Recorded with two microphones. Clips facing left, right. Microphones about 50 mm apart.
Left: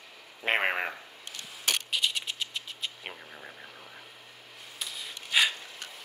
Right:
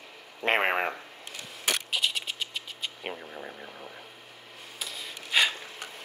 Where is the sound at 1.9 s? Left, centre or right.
Centre.